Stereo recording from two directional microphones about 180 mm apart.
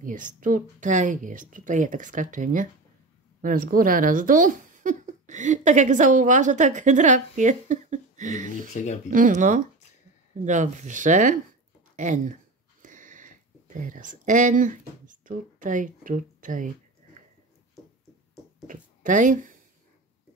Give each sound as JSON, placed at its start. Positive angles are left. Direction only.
{"t": 0.0, "sound": "speech", "side_deg": -45}
{"t": 8.8, "sound": "speech", "side_deg": 45}
{"t": 9.1, "sound": "speech", "side_deg": -45}
{"t": 12.8, "sound": "a sound", "side_deg": -45}
{"t": 13.7, "sound": "speech", "side_deg": -45}
{"t": 18.7, "sound": "speech", "side_deg": -45}